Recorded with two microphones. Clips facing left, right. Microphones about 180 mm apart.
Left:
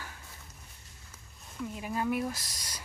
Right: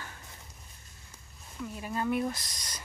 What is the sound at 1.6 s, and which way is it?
Speech, 10° left (ahead or behind).